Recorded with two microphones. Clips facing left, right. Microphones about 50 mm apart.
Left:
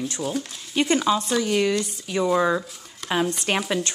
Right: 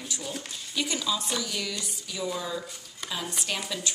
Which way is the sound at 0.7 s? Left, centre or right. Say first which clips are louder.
Left 9 dB; left.